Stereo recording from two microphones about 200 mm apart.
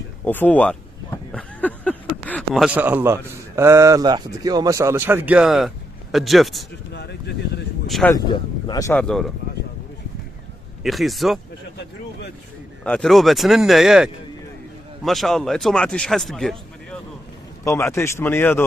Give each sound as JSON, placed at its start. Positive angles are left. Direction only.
{"t": 0.2, "sound": "speech", "side_deg": 10}
{"t": 6.9, "sound": "a sound", "side_deg": 55}
{"t": 7.9, "sound": "speech", "side_deg": 5}
{"t": 8.3, "sound": "speech", "side_deg": 20}
{"t": 9.0, "sound": "speech", "side_deg": 0}
{"t": 10.8, "sound": "speech", "side_deg": 0}
{"t": 12.8, "sound": "speech", "side_deg": 5}
{"t": 17.6, "sound": "speech", "side_deg": 10}